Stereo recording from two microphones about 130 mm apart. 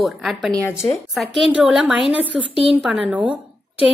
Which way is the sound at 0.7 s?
20° left (ahead or behind).